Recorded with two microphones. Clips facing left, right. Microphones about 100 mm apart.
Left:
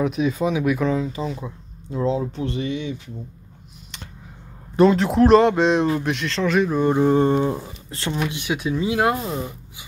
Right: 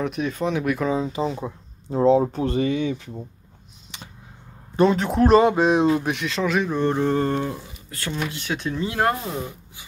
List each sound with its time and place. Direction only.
0.0 s speech: 5° left (ahead or behind)
0.9 s speech: 25° right (ahead or behind)
4.7 s speech: centre (ahead or behind); by 8.2 s 25° left (ahead or behind)
8.2 s speech: 15° left (ahead or behind)